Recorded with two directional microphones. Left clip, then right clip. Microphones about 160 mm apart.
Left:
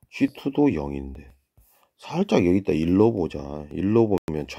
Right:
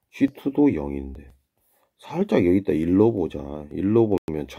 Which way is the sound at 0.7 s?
30° left (ahead or behind).